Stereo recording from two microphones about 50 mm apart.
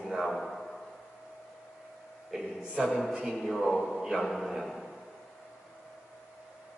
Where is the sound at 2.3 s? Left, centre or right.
Centre.